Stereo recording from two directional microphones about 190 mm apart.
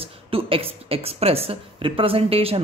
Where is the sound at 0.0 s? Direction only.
30° right (ahead or behind).